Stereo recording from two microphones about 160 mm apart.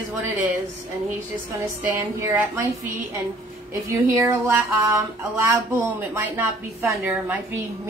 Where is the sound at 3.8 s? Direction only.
15° right (ahead or behind).